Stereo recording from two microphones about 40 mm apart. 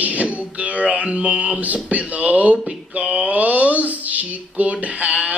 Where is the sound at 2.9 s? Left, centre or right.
Right.